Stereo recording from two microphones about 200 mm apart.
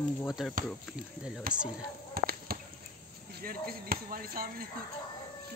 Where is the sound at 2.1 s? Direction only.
50° right (ahead or behind).